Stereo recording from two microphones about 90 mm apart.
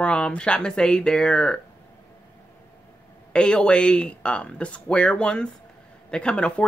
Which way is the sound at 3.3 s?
10° left (ahead or behind).